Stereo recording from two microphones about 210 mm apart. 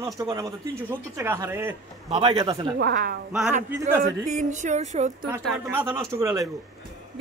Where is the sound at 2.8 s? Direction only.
45° right (ahead or behind).